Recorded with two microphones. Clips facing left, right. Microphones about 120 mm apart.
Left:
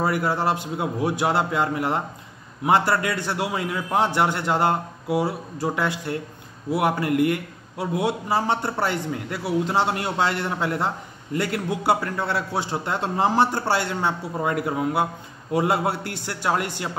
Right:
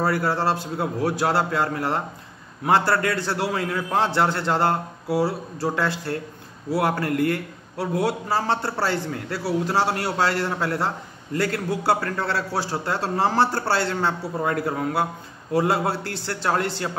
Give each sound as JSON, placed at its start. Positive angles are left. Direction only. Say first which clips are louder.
{"t": 0.0, "sound": "a man's voice", "louder": "even", "side_deg": 20}